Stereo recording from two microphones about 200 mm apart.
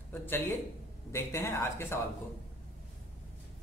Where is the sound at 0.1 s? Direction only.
10° left (ahead or behind).